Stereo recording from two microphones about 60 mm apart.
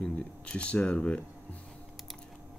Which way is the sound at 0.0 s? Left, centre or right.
Centre.